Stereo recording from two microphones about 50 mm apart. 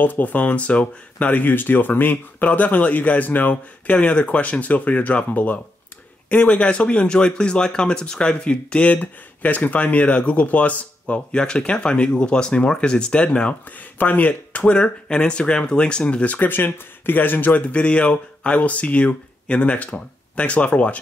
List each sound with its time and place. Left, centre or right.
0.0 s speech: left
3.9 s speech: left
11.1 s speech: centre
13.9 s speech: left
16.3 s speech: left